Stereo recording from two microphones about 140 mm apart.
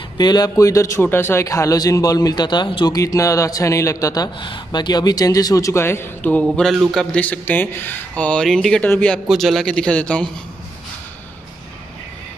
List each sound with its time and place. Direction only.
0.2 s a man's voice: 30° left (ahead or behind)
6.4 s a sound: centre (ahead or behind)
6.9 s a man's voice: 5° left (ahead or behind)